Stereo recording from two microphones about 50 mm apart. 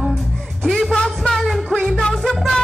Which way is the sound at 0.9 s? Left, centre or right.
Centre.